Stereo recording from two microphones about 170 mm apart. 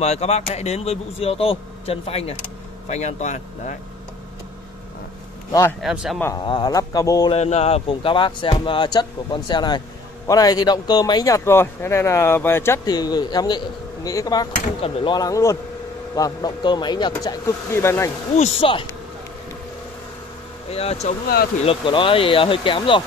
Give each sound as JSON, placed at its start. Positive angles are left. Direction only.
{"t": 0.0, "sound": "speech", "side_deg": 40}
{"t": 5.5, "sound": "a man's voice", "side_deg": 15}
{"t": 5.8, "sound": "a man's voice", "side_deg": 0}
{"t": 6.2, "sound": "speech", "side_deg": 25}
{"t": 7.2, "sound": "speech", "side_deg": 40}
{"t": 18.3, "sound": "speech", "side_deg": 35}
{"t": 20.7, "sound": "speech", "side_deg": 35}